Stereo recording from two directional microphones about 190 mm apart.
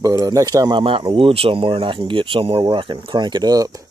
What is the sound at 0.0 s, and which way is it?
Speech, 20° right (ahead or behind).